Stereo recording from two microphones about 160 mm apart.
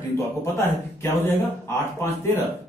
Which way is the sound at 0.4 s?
15° left (ahead or behind).